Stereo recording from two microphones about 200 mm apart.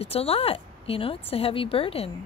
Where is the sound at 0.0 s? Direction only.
30° left (ahead or behind).